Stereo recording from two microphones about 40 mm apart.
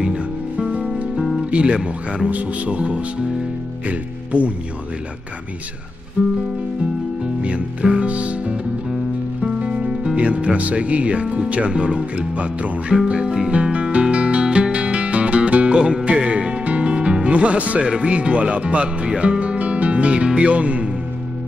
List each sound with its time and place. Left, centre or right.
0.0 s music: right
1.7 s speech: centre
2.2 s speech: right
3.8 s music: right
6.2 s music: right
7.4 s music: right
8.1 s music: right
9.4 s speech: right
12.2 s speech: right
13.1 s speech: centre
13.5 s music: right
17.8 s speech: right